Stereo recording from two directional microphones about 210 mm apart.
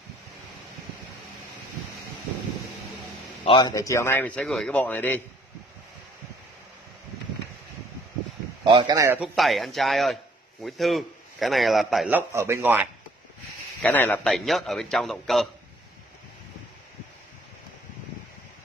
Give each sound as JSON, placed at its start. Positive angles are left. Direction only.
{"t": 3.4, "sound": "speech", "side_deg": 20}
{"t": 8.6, "sound": "speech", "side_deg": -20}
{"t": 9.3, "sound": "a man's voice", "side_deg": 0}
{"t": 12.3, "sound": "speech", "side_deg": -15}
{"t": 13.8, "sound": "a man's voice", "side_deg": 10}